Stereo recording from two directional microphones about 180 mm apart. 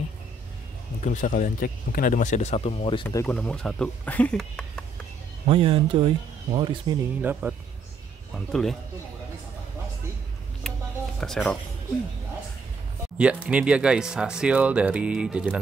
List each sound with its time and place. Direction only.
1.0 s speech: 45° left (ahead or behind); by 3.2 s 30° left (ahead or behind)
3.2 s speech: 5° left (ahead or behind)
5.5 s speech: 30° right (ahead or behind)
7.2 s speech: 10° right (ahead or behind)
10.6 s music: 5° left (ahead or behind)
11.1 s speech: centre (ahead or behind)
13.2 s speech: 5° right (ahead or behind)